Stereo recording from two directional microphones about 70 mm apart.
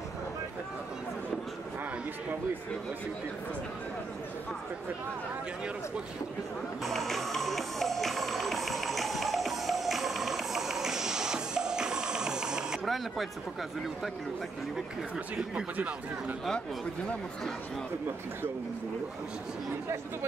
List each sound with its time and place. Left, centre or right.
6.8 s music: centre
12.8 s speech: centre
15.5 s speech: centre